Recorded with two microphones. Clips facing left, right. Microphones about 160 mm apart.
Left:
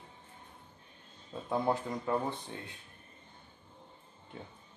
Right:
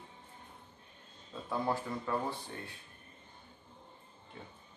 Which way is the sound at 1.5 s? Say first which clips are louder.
Left 3 dB; 20° left (ahead or behind).